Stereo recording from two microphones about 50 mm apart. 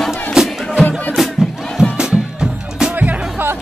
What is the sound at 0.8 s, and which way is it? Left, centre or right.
Music, left.